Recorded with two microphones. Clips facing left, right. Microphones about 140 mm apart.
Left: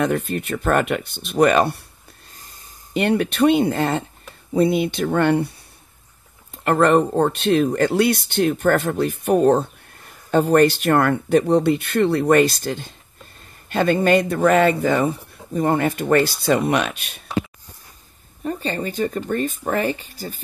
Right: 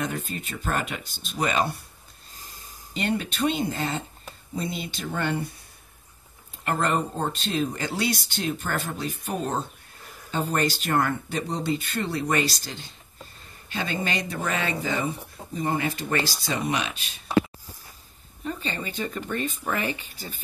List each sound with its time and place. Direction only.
0.0 s speech: 65° left (ahead or behind)
2.9 s speech: 60° left (ahead or behind)
6.5 s speech: 65° left (ahead or behind)
18.4 s speech: 45° left (ahead or behind)